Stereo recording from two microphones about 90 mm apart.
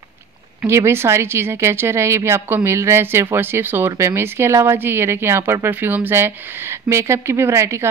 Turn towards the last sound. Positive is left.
turn(degrees=-30)  # may be behind; listen again after turning